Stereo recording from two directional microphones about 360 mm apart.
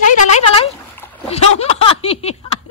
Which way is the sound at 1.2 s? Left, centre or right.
Centre.